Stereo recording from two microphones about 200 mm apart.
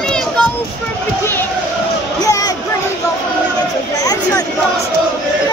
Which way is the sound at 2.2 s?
20° left (ahead or behind).